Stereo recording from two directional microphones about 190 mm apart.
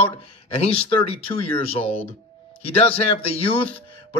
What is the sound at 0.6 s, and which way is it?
A man's voice, 30° left (ahead or behind).